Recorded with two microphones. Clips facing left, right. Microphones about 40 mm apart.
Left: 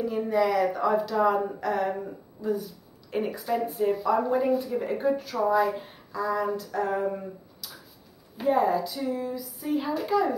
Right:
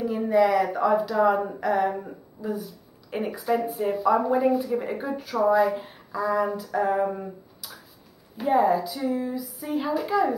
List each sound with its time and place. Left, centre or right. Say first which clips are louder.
0.3 s a woman's voice: right 4 dB; centre
7.1 s a sound: even; centre
8.4 s speech: right 2 dB; centre